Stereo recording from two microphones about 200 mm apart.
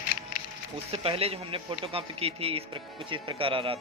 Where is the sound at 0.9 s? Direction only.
30° right (ahead or behind).